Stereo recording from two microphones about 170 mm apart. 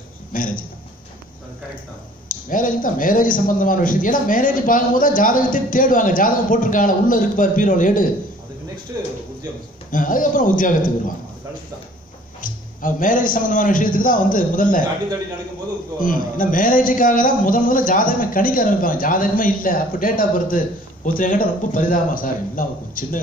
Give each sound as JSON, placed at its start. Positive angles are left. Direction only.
{"t": 0.3, "sound": "a man's voice", "side_deg": 50}
{"t": 2.2, "sound": "a man's voice", "side_deg": 55}
{"t": 9.8, "sound": "a man's voice", "side_deg": 50}
{"t": 12.4, "sound": "a man's voice", "side_deg": 50}
{"t": 16.0, "sound": "a man's voice", "side_deg": 50}